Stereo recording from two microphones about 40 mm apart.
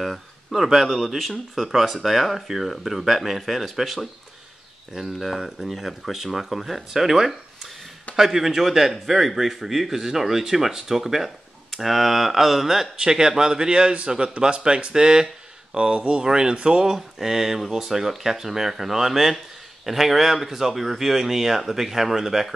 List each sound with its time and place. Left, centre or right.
0.0 s a sound: centre
0.6 s speech: centre; by 16.9 s right
16.9 s speech: centre